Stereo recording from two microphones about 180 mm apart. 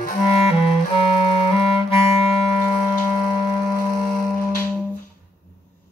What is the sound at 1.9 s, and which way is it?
Music, 30° left (ahead or behind).